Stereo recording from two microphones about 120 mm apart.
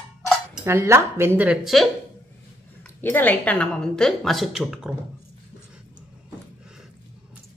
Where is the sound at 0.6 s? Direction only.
20° right (ahead or behind).